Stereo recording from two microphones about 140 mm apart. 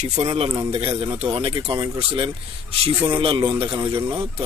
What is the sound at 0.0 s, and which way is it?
A man's voice, 50° right (ahead or behind).